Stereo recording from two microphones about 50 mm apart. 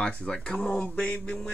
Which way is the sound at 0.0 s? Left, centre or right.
Centre.